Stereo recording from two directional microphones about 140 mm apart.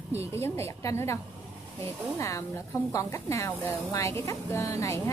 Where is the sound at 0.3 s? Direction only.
20° left (ahead or behind).